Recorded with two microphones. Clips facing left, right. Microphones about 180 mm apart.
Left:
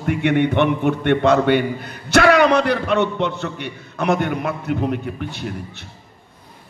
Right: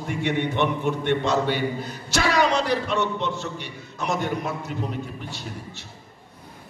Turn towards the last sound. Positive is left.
turn(degrees=65)  # may be behind; listen again after turning